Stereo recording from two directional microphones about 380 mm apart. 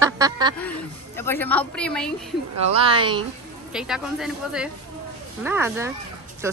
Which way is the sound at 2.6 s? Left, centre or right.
Centre.